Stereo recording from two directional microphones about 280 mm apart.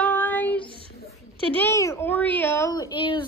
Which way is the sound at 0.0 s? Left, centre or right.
Centre.